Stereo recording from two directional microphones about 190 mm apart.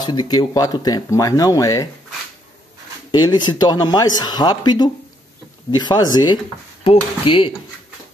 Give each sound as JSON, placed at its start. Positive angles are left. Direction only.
{"t": 0.0, "sound": "speech", "side_deg": 20}
{"t": 3.1, "sound": "speech", "side_deg": 25}